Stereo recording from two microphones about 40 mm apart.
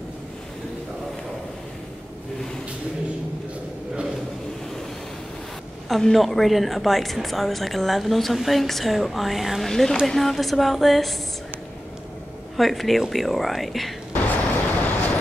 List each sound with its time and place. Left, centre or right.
5.9 s a woman's voice: centre
9.7 s a woman's voice: centre
12.5 s a woman's voice: centre
14.2 s vehicle: left